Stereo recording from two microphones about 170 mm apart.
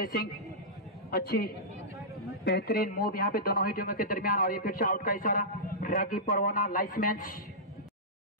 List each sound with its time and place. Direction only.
1.1 s speech: 65° left (ahead or behind)